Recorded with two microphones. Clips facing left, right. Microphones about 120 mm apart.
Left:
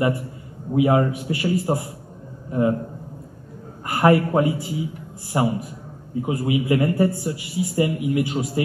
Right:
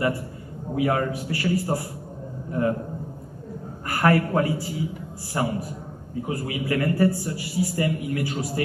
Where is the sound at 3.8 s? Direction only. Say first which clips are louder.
Left 4 dB; 20° left (ahead or behind).